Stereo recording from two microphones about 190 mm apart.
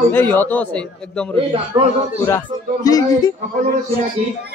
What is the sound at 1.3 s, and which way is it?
Speech, 30° right (ahead or behind).